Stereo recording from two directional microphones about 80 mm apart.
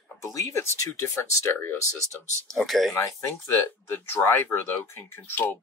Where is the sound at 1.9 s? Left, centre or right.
Right.